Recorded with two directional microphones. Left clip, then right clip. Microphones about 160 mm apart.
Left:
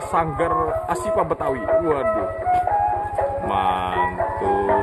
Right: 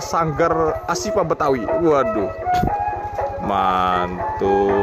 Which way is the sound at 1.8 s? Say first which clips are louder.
Right 4 dB; 50° right (ahead or behind).